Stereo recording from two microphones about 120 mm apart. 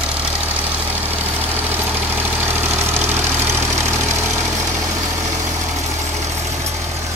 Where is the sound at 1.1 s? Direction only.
15° right (ahead or behind).